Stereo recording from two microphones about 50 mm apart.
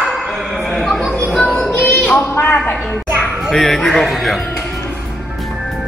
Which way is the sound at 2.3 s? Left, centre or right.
Left.